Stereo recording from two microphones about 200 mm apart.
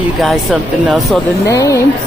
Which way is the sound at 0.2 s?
Centre (ahead or behind).